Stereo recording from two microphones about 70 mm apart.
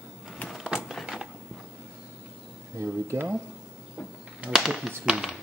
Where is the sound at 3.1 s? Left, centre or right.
Right.